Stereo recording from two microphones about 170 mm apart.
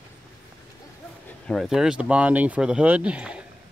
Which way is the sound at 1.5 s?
Centre (ahead or behind).